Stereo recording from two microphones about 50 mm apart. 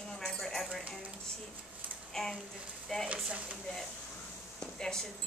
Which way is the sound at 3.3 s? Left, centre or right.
Right.